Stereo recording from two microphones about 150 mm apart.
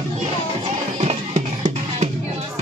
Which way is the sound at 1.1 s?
50° right (ahead or behind).